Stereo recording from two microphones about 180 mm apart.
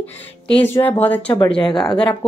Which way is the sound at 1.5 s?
25° left (ahead or behind).